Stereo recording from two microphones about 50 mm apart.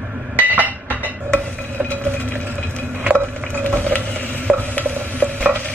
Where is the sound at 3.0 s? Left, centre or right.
Right.